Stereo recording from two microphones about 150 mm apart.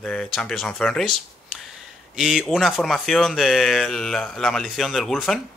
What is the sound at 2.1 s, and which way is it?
Speech, 5° right (ahead or behind).